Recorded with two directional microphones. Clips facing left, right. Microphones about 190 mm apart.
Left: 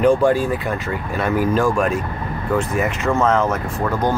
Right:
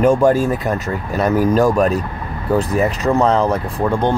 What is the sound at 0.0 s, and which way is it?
Speech, 45° right (ahead or behind).